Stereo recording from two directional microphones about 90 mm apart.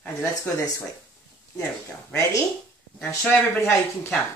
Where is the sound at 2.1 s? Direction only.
35° left (ahead or behind).